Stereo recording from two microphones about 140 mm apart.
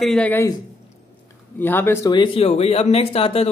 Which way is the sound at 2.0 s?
35° left (ahead or behind).